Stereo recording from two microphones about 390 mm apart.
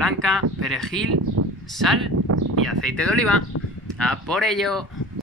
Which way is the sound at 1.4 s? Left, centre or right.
Right.